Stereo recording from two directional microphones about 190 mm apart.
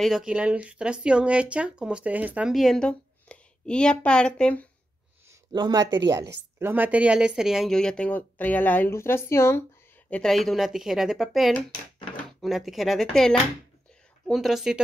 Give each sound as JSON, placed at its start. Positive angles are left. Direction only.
{"t": 0.0, "sound": "speech", "side_deg": -5}
{"t": 5.3, "sound": "a woman's voice", "side_deg": -20}